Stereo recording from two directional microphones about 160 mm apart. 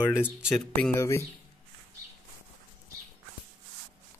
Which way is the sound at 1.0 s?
15° left (ahead or behind).